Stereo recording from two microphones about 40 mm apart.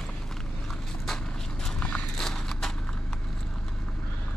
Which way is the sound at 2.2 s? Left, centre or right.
Centre.